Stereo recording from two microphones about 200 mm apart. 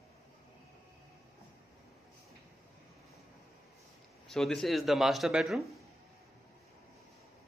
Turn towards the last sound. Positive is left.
turn(degrees=0)  # may be behind; listen again after turning